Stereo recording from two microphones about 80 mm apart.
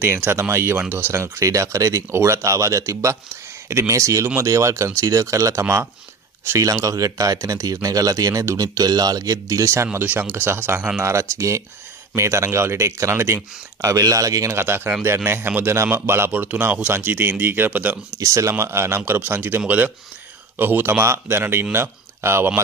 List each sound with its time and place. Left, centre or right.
0.0 s speech: right
9.9 s speech: right
14.6 s speech: right
16.3 s speech: right
18.1 s speech: right